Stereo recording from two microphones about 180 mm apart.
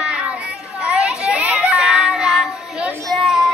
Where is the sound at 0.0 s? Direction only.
5° right (ahead or behind).